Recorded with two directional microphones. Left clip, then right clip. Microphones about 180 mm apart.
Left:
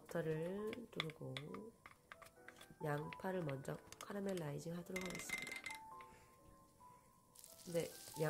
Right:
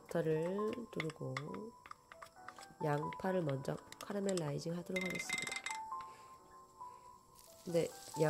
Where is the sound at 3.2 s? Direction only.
30° right (ahead or behind).